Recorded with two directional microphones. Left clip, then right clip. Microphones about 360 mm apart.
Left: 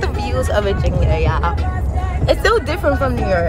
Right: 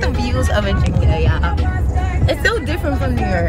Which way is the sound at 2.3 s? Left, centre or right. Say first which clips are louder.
Left 3 dB; centre.